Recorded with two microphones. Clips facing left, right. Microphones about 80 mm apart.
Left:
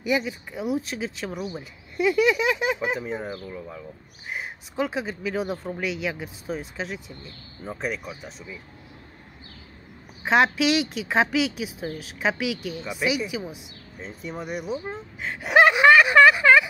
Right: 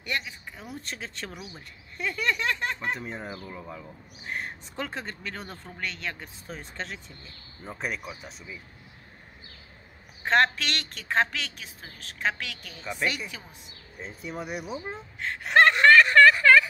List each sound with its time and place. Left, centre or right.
0.0 s speech: centre
4.3 s speech: centre
10.2 s speech: centre
13.9 s speech: centre